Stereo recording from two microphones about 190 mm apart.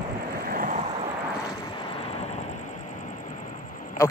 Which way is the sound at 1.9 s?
30° left (ahead or behind).